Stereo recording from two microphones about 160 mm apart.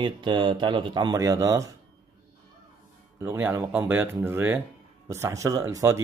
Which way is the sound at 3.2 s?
15° right (ahead or behind).